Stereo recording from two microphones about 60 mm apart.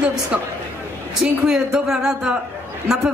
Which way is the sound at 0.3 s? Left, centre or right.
Centre.